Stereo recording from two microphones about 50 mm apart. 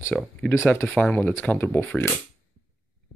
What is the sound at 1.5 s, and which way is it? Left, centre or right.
Speech, left.